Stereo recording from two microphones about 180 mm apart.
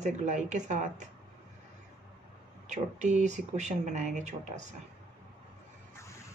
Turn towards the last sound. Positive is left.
turn(degrees=-40)  # may be behind; listen again after turning